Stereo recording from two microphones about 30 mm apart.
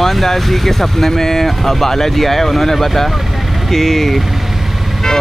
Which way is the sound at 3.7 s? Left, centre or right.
Centre.